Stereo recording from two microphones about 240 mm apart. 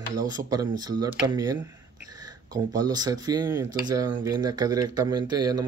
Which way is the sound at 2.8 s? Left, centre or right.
Centre.